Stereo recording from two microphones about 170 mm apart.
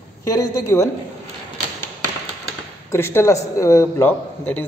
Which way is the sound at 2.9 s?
15° left (ahead or behind).